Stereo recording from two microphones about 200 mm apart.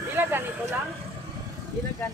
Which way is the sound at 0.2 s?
10° right (ahead or behind).